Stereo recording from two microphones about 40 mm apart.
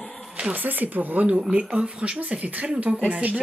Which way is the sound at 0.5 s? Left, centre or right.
Right.